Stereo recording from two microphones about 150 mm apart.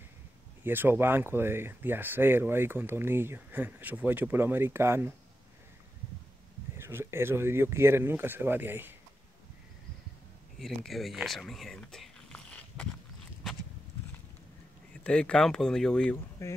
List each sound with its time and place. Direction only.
0.7 s speech: 15° right (ahead or behind)
6.8 s speech: 15° right (ahead or behind)
10.6 s speech: centre (ahead or behind)
15.0 s speech: 5° left (ahead or behind)
16.4 s speech: 20° left (ahead or behind)